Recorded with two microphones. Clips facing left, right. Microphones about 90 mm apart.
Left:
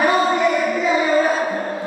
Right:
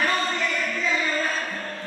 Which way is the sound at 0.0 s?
15° left (ahead or behind).